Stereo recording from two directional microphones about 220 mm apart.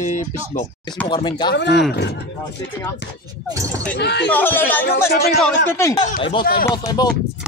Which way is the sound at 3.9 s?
50° left (ahead or behind).